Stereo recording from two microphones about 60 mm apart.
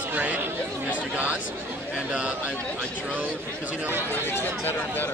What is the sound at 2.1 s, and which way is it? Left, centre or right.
Speech, centre.